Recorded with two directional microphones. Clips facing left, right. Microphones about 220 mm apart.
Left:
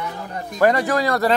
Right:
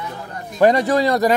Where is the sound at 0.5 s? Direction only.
20° right (ahead or behind).